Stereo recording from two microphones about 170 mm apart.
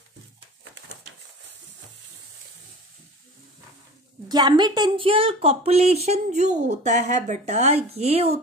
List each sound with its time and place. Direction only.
4.3 s a woman's voice: 25° right (ahead or behind)